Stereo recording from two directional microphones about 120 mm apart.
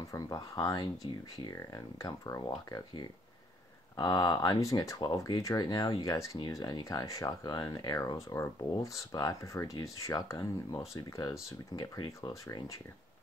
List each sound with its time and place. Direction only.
0.1 s speech: 30° left (ahead or behind)
1.0 s speech: 45° left (ahead or behind)
1.4 s speech: 35° left (ahead or behind)